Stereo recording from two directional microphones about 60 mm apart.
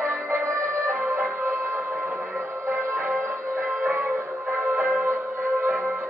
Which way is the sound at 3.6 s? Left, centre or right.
Right.